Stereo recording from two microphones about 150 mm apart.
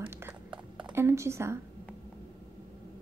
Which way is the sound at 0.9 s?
15° right (ahead or behind).